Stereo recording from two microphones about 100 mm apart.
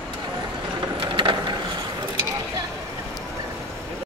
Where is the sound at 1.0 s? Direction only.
60° right (ahead or behind).